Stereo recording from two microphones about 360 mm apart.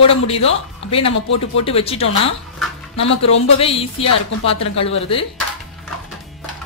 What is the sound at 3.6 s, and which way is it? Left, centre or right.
A woman's voice, centre.